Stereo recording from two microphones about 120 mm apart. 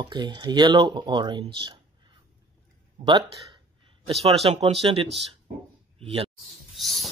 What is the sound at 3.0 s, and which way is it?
Speech, 40° right (ahead or behind).